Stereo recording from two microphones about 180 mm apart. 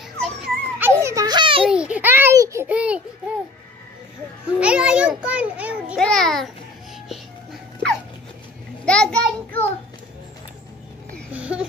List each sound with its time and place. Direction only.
0.2 s dog: 10° right (ahead or behind); by 1.7 s 30° right (ahead or behind)
1.7 s a sound: 5° right (ahead or behind)
4.6 s a child's voice: 5° right (ahead or behind)
5.9 s a child's voice: 5° left (ahead or behind)
8.8 s a child's voice: 5° left (ahead or behind)
11.3 s a child's voice: 5° right (ahead or behind)